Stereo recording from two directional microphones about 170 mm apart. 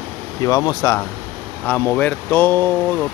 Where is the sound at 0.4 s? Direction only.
20° left (ahead or behind).